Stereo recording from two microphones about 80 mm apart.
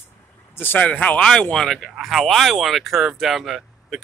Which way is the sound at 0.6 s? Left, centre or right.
Left.